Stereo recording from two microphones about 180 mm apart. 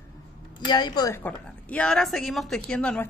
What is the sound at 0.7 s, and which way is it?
A woman's voice, 25° left (ahead or behind).